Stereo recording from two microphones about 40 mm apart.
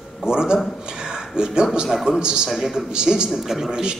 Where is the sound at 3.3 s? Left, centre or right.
Centre.